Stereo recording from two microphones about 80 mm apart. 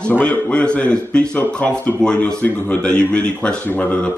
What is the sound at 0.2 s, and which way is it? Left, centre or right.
A man's voice, centre.